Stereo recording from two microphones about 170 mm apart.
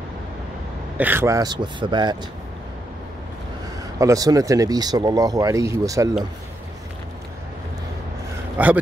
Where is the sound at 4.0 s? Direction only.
20° right (ahead or behind).